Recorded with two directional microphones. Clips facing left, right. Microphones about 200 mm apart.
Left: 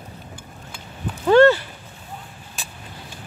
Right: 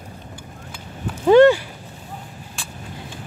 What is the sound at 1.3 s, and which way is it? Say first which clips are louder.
Clip-clop: right 2 dB; 15° right (ahead or behind).